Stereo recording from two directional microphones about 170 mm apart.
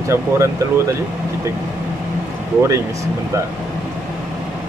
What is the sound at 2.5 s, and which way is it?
Speech, 15° right (ahead or behind).